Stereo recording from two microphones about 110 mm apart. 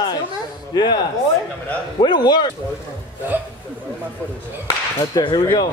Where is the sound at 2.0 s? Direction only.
40° left (ahead or behind).